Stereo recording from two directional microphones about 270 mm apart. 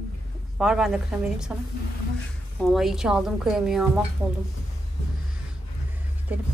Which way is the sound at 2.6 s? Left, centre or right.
Centre.